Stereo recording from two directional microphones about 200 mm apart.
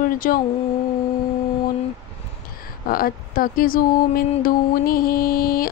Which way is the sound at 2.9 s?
45° left (ahead or behind).